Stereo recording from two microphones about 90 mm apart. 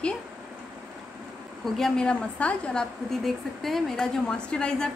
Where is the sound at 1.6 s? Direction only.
5° left (ahead or behind).